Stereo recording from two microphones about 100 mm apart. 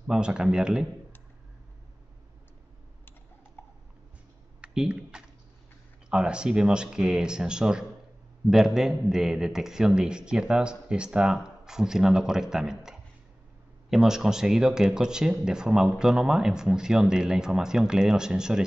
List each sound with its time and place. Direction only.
0.0 s speech: 10° right (ahead or behind)
3.6 s a sound: 25° left (ahead or behind)
4.6 s typing: 10° right (ahead or behind)
6.0 s a man's voice: 10° right (ahead or behind)